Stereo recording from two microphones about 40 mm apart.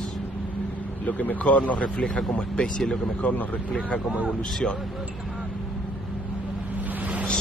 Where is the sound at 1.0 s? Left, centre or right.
Left.